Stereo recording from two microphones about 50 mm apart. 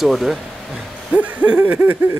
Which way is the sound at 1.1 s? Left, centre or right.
Right.